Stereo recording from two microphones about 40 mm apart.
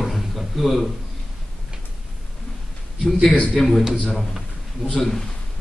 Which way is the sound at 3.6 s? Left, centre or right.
Centre.